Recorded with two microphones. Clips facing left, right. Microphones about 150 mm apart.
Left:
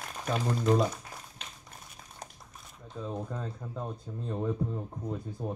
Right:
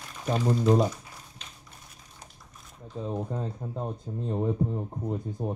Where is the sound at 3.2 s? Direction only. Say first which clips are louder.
Right 4 dB; 25° right (ahead or behind).